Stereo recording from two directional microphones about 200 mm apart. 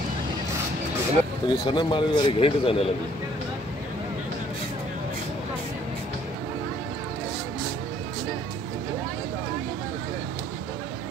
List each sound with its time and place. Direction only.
1.5 s speech: 25° left (ahead or behind)